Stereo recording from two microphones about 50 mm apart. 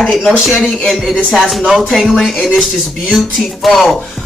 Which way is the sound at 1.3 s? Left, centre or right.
Centre.